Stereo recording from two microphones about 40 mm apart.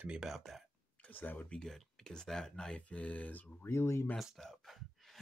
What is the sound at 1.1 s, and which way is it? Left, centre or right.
Speech, left.